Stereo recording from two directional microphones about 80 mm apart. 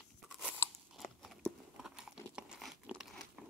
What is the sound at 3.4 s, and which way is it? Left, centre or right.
Crumpling, centre.